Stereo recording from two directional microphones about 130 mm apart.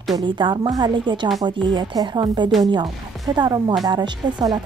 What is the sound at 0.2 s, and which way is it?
A woman's voice, 35° right (ahead or behind).